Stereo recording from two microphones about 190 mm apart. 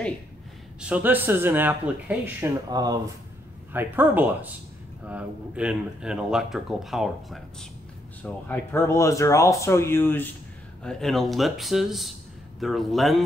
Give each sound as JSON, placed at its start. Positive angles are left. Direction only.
{"t": 0.7, "sound": "speech", "side_deg": -5}
{"t": 2.7, "sound": "speech", "side_deg": -20}
{"t": 3.7, "sound": "speech", "side_deg": -10}